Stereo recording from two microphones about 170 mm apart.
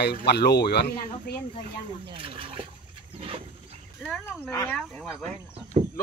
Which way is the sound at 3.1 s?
35° right (ahead or behind).